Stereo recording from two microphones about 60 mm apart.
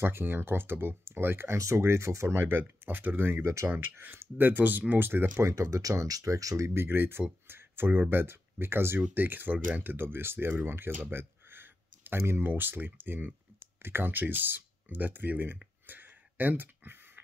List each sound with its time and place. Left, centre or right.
0.0 s speech: right
2.4 s speech: right
5.5 s speech: right
10.6 s a sound: right
12.4 s speech: right
15.9 s a sound: right